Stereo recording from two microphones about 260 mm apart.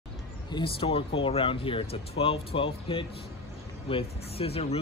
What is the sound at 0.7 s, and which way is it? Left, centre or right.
Speech, left.